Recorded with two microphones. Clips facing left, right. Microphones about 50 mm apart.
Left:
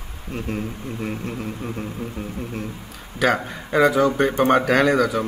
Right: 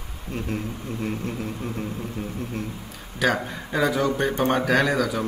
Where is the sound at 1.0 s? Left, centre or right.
Centre.